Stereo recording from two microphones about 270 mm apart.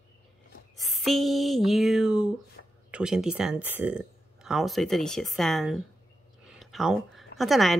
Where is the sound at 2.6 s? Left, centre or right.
Left.